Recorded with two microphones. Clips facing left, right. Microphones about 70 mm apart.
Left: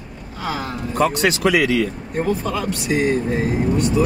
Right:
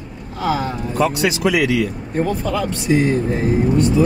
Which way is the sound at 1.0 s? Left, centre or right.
Left.